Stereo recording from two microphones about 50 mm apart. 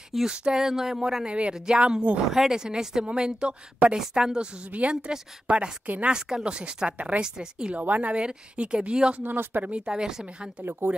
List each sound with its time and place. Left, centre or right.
0.3 s speech: centre
0.6 s speech: centre
1.2 s speech: right
4.6 s speech: right
5.9 s speech: right
6.1 s speech: centre
7.2 s speech: centre
7.7 s speech: right
8.2 s speech: centre
9.2 s speech: right
9.7 s speech: centre
10.6 s speech: right